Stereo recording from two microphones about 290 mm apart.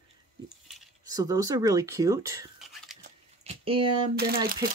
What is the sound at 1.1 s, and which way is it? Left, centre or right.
Speech, centre.